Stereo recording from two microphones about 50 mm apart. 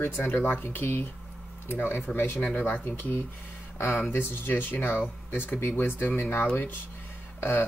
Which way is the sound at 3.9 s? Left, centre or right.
Left.